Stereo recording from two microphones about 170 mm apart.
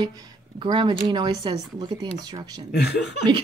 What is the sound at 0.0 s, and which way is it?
Speech, 25° right (ahead or behind).